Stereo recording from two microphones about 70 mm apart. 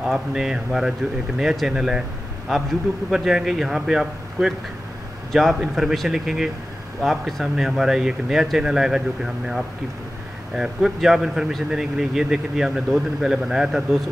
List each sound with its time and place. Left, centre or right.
0.0 s a man's voice: centre